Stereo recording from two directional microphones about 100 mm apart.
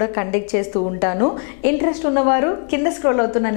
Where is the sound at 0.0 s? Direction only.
15° left (ahead or behind).